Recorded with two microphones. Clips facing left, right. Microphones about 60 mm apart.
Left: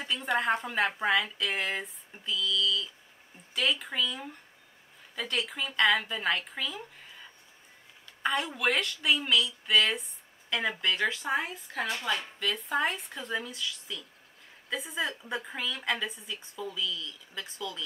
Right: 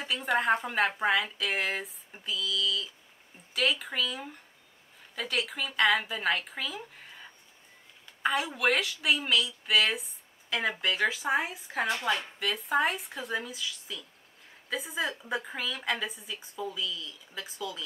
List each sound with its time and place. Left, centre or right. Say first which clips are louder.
0.0 s a sound: right 1 dB; centre
0.6 s a woman's voice: right 1 dB; centre
12.2 s a woman's voice: even; centre